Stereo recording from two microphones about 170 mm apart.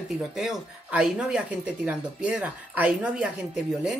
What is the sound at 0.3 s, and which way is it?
Speech, centre (ahead or behind).